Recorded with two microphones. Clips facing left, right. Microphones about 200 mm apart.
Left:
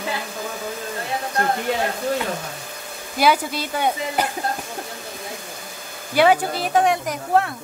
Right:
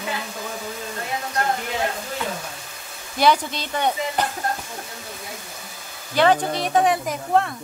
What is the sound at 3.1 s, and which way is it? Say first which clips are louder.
Speech: even; 5° left (ahead or behind).